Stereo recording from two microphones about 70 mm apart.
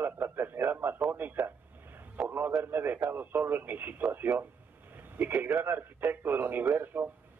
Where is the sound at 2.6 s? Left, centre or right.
Right.